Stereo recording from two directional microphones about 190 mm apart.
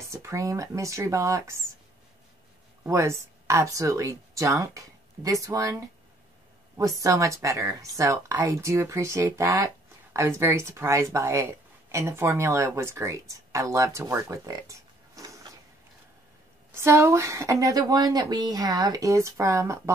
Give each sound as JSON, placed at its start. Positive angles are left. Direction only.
{"t": 0.1, "sound": "speech", "side_deg": -15}
{"t": 2.8, "sound": "speech", "side_deg": -15}
{"t": 6.8, "sound": "speech", "side_deg": -20}
{"t": 16.7, "sound": "speech", "side_deg": -15}